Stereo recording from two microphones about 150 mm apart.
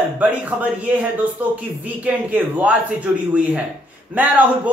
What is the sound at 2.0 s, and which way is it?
A man's voice, 10° right (ahead or behind).